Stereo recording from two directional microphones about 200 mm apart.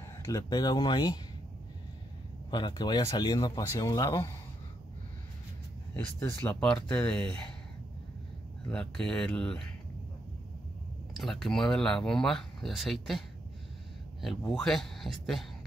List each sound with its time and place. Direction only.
0.3 s speech: 20° left (ahead or behind)
2.5 s speech: 20° left (ahead or behind)
5.9 s speech: 10° left (ahead or behind)
8.6 s speech: 5° left (ahead or behind)
11.1 s speech: centre (ahead or behind)
14.2 s speech: centre (ahead or behind)